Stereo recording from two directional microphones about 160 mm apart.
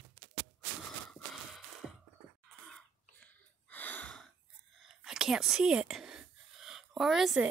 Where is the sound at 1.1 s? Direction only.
Centre (ahead or behind).